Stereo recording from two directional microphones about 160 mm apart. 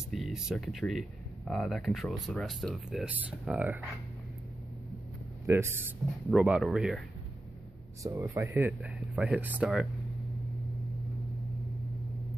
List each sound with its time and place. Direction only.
0.1 s speech: centre (ahead or behind)
5.5 s speech: 15° right (ahead or behind)
8.0 s speech: 20° right (ahead or behind)